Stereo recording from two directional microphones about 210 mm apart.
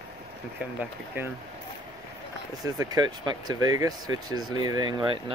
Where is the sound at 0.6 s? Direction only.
5° right (ahead or behind).